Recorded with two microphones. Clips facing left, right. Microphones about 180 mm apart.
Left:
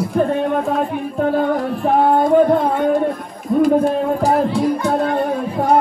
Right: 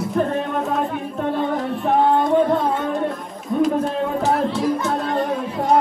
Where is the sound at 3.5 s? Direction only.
5° left (ahead or behind).